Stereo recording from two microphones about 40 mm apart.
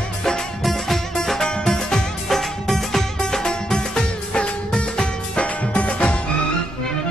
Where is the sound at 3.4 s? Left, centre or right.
Centre.